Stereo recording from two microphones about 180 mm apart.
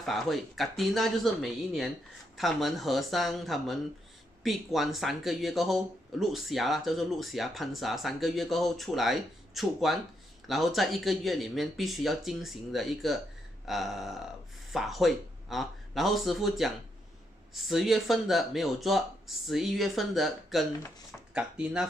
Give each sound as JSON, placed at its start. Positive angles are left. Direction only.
{"t": 0.0, "sound": "speech", "side_deg": 0}